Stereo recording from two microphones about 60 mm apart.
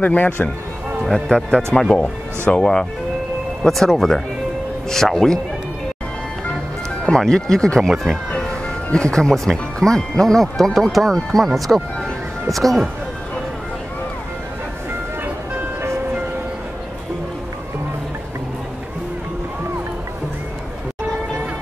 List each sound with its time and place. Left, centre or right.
0.0 s speech: left
1.7 s speech: centre
7.1 s speech: centre
15.2 s music: right